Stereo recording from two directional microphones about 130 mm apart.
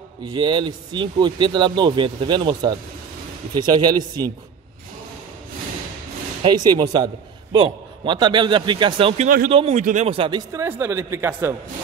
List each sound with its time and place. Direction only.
0.2 s speech: 35° right (ahead or behind)
6.4 s speech: 35° right (ahead or behind)
9.2 s speech: 90° right
9.5 s a man's voice: 45° right (ahead or behind)
9.8 s speech: 70° right (ahead or behind)
10.1 s speech: 40° right (ahead or behind)
10.5 s a woman's voice: 20° right (ahead or behind)